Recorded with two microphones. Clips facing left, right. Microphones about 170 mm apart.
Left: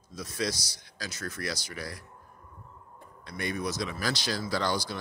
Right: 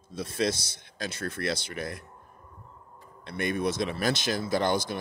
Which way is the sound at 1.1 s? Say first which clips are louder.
Right 3 dB; 60° right (ahead or behind).